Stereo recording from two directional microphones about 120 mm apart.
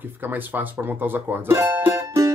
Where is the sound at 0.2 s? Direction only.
15° right (ahead or behind).